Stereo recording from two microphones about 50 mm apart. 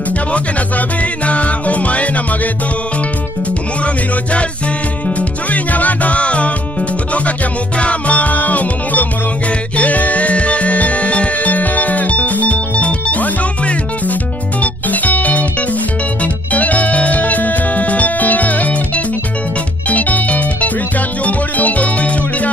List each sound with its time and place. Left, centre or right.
0.3 s music: left
3.8 s music: left
7.8 s music: left
16.5 s music: left